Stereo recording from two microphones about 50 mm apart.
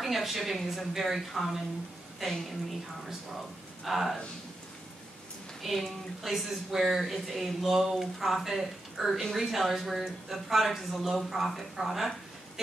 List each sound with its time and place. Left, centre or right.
0.0 s speech: centre
3.8 s speech: centre
5.6 s speech: centre